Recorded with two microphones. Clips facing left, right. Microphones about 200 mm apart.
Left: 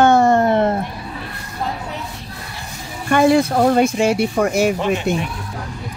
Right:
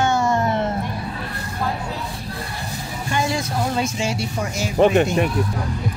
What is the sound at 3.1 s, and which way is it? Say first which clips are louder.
Speech: left 10 dB; 60° left (ahead or behind).